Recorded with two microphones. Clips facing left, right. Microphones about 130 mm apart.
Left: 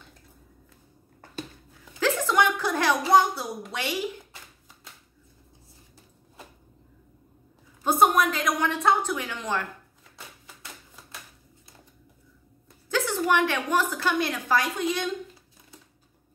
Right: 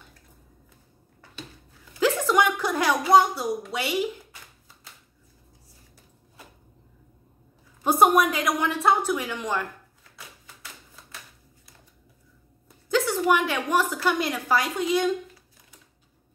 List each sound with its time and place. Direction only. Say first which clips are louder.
2.0 s a sound: right 2 dB; 10° right (ahead or behind)
3.1 s a woman's voice: right 3 dB; 10° right (ahead or behind)
7.8 s a woman's voice: right 2 dB; 10° right (ahead or behind)
12.6 s a woman's voice: right 4 dB; 10° right (ahead or behind)